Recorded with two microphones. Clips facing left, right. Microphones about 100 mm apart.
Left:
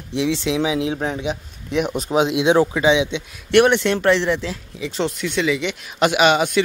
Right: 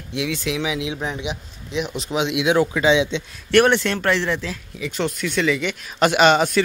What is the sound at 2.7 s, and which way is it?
A man's voice, 20° left (ahead or behind).